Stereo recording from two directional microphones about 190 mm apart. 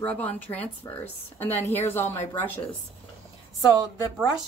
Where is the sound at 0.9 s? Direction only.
20° left (ahead or behind).